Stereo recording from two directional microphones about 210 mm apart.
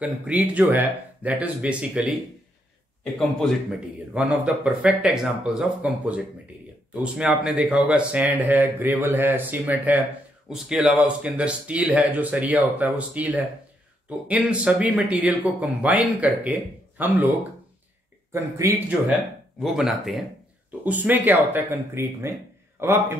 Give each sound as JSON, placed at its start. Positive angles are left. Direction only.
{"t": 0.0, "sound": "a man's voice", "side_deg": -5}